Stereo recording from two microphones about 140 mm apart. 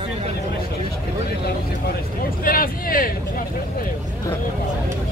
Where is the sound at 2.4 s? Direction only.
90° left.